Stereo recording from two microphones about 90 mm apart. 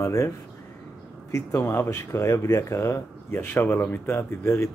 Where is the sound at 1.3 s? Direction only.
30° left (ahead or behind).